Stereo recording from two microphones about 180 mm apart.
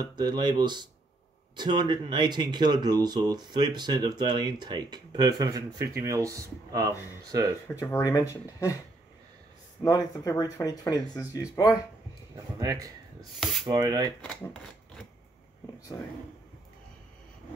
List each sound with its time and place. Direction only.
0.0 s speech: 25° right (ahead or behind)
7.8 s speech: 15° left (ahead or behind)
9.8 s speech: 20° left (ahead or behind)
12.5 s speech: 20° right (ahead or behind)
14.4 s rub: 5° left (ahead or behind)
15.9 s speech: 15° left (ahead or behind)